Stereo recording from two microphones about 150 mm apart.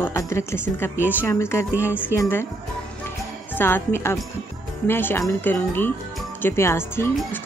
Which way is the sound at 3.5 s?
15° left (ahead or behind).